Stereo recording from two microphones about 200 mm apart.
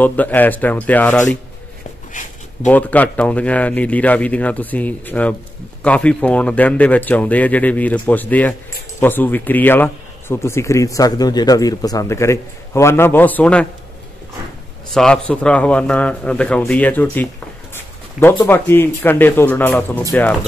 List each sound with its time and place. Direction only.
0.0 s speech: 10° left (ahead or behind)
2.1 s speech: 40° left (ahead or behind)
2.6 s speech: 5° left (ahead or behind)
14.9 s speech: 5° left (ahead or behind)
18.2 s speech: 5° right (ahead or behind)
18.5 s speech: 10° left (ahead or behind)